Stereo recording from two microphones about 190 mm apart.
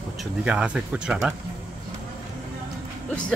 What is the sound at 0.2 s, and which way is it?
Speech, 5° right (ahead or behind).